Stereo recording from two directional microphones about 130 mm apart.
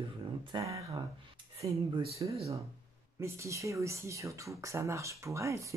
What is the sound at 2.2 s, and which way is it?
Speech, 35° right (ahead or behind).